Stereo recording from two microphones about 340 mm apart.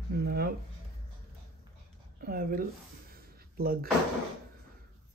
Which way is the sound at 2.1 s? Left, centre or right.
Right.